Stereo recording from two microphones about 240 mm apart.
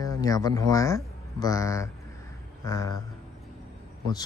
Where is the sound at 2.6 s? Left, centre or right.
Centre.